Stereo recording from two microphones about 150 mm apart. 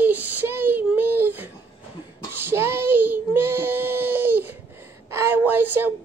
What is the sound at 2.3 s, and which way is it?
Child singing, 15° right (ahead or behind).